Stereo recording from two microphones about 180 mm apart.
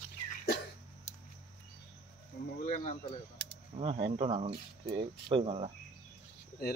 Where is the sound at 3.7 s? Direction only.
35° right (ahead or behind).